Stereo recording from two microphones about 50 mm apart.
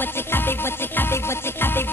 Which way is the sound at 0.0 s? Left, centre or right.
Left.